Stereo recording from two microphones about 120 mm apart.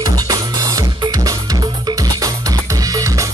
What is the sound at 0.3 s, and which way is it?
Music, 30° right (ahead or behind).